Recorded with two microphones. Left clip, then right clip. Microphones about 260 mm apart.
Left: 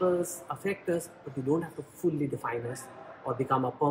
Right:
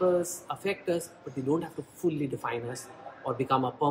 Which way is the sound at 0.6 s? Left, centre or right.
Centre.